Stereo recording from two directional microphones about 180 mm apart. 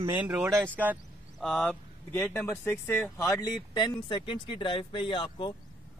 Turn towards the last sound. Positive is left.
turn(degrees=25)  # may be behind; listen again after turning